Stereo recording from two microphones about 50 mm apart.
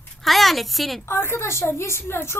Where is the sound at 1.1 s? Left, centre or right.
Left.